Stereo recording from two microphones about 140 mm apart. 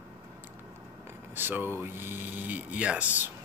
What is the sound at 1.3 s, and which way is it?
Speech, 15° right (ahead or behind).